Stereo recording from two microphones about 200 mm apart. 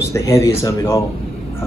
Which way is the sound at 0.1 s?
15° left (ahead or behind).